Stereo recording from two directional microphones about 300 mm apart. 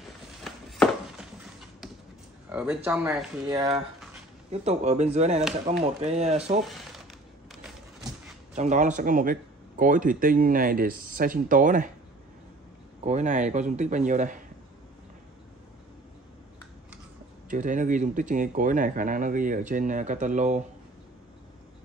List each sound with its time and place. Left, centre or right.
0.4 s a sound: centre
2.5 s speech: centre; by 6.6 s right
8.5 s speech: right
13.0 s speech: right
17.5 s speech: right